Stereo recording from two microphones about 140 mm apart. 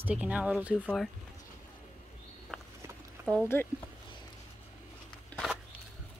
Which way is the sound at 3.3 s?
15° left (ahead or behind).